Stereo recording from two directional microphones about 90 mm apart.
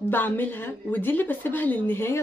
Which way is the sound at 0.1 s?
20° left (ahead or behind).